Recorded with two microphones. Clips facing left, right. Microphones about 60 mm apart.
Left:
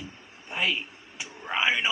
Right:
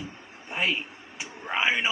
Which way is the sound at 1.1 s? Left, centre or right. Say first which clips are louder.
Even; centre.